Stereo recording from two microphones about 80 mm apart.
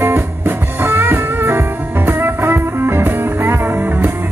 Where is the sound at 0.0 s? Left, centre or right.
Right.